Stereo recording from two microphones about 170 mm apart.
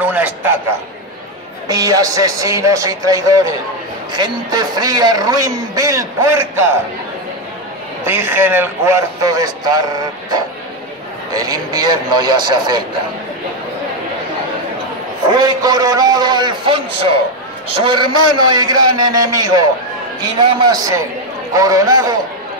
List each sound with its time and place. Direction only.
0.0 s a sound: 10° right (ahead or behind)
1.7 s a man's voice: 20° right (ahead or behind)
8.0 s a man's voice: 15° right (ahead or behind)
15.2 s a man's voice: 25° right (ahead or behind)